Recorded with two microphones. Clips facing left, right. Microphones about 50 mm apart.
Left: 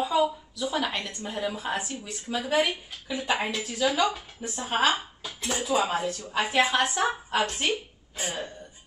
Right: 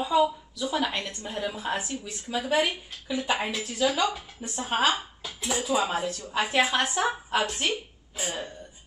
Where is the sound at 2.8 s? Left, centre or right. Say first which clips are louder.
Even; centre.